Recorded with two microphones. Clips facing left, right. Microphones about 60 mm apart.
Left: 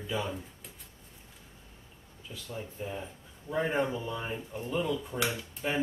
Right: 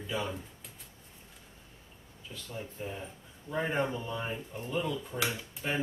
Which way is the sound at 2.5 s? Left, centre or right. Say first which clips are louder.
Left 2 dB; centre.